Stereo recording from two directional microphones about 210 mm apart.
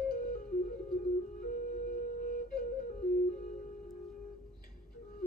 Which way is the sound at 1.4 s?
45° left (ahead or behind).